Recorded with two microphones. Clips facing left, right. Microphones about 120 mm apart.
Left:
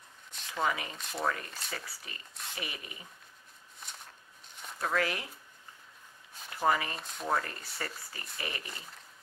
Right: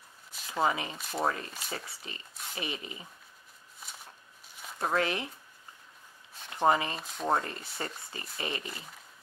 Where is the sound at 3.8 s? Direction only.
5° right (ahead or behind).